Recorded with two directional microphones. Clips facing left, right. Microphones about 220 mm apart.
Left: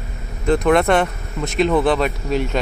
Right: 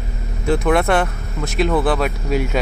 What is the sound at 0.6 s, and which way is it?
Speech, 5° right (ahead or behind).